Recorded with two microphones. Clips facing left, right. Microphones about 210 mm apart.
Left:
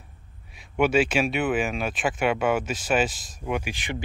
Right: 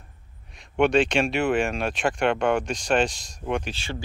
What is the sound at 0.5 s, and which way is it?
Speech, 5° left (ahead or behind).